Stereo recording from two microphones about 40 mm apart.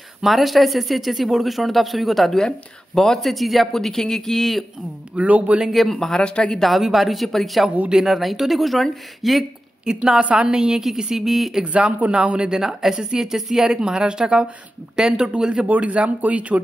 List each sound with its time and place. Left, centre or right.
0.2 s speech: centre
5.1 s speech: right
5.7 s speech: centre
5.9 s speech: centre
6.2 s speech: left
6.5 s speech: centre
9.8 s a woman's voice: centre
11.6 s speech: right
12.5 s a woman's voice: centre
15.6 s speech: right